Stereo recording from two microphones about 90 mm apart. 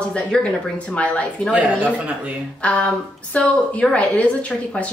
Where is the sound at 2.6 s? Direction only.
15° left (ahead or behind).